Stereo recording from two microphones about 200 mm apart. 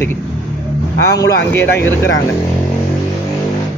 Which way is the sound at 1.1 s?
15° left (ahead or behind).